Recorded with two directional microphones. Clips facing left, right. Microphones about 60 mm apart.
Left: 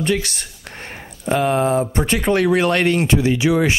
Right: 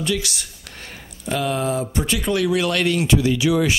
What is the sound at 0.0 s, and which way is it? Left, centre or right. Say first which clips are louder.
Speech: left 3 dB; left.